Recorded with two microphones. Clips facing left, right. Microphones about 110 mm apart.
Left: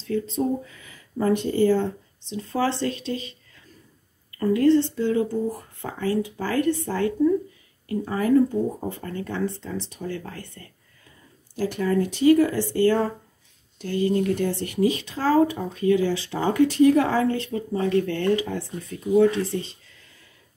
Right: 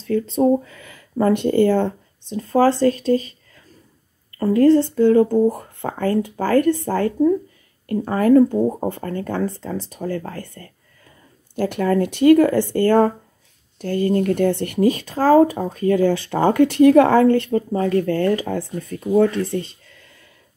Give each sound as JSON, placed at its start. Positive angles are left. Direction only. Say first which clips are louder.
{"t": 0.1, "sound": "speech", "louder": "right 7 dB", "side_deg": -65}
{"t": 4.4, "sound": "speech", "louder": "right 4 dB", "side_deg": -40}
{"t": 7.8, "sound": "speech", "louder": "right 6 dB", "side_deg": -60}
{"t": 11.5, "sound": "speech", "louder": "right 4 dB", "side_deg": -60}